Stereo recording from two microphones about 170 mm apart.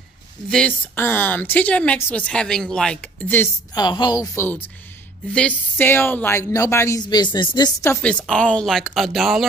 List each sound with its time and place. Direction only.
0.5 s speech: 5° left (ahead or behind)
3.7 s a woman's voice: 25° left (ahead or behind)
5.3 s speech: 10° left (ahead or behind)